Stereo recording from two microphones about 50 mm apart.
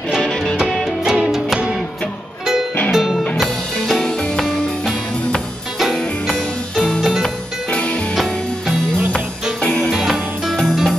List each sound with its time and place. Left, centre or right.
0.7 s music: centre
2.9 s music: centre
3.3 s music: centre
5.8 s music: centre
7.7 s music: left
8.1 s music: centre
9.1 s music: left
10.1 s music: centre